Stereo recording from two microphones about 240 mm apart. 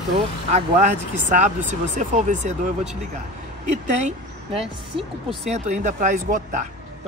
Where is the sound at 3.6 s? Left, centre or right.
Right.